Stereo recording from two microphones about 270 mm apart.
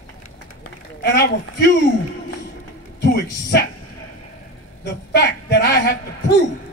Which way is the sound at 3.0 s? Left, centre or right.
Left.